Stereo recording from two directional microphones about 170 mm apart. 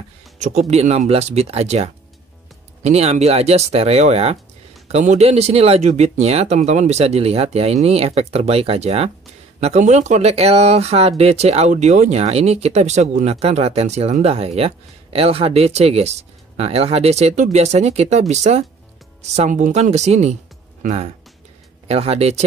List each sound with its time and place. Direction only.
0.4 s speech: 40° right (ahead or behind)